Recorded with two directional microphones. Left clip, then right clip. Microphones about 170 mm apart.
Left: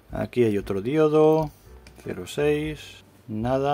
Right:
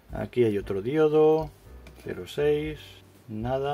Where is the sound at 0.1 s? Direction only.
20° left (ahead or behind).